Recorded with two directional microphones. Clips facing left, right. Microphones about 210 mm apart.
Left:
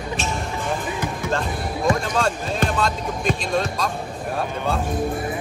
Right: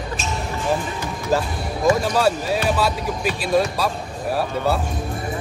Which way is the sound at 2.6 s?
5° right (ahead or behind).